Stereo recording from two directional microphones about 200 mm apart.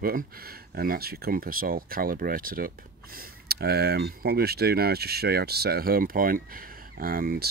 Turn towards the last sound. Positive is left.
turn(degrees=-45)  # may be behind; listen again after turning